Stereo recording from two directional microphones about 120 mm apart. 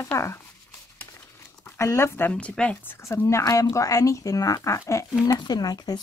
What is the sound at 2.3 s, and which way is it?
Speech, 10° left (ahead or behind).